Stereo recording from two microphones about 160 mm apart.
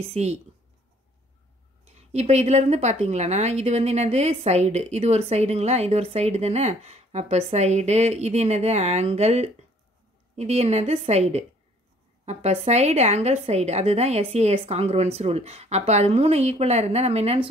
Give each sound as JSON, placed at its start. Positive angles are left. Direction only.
{"t": 0.1, "sound": "a woman's voice", "side_deg": -45}
{"t": 2.0, "sound": "a woman's voice", "side_deg": -40}